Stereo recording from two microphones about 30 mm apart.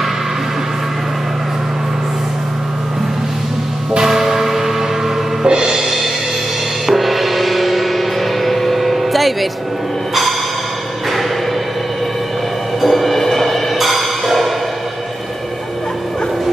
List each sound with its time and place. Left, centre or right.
4.0 s train: centre
5.4 s music: right
6.9 s gong: centre
12.8 s music: centre